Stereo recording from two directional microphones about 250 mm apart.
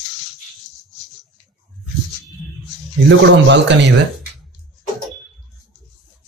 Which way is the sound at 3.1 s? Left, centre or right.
Right.